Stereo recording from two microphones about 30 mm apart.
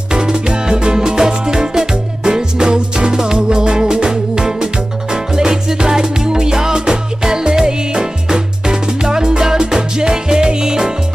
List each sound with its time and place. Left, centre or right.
0.1 s music: right